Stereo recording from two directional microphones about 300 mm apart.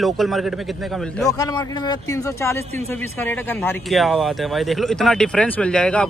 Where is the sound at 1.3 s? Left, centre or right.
Centre.